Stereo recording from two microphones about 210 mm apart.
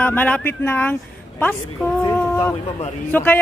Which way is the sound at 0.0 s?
10° left (ahead or behind).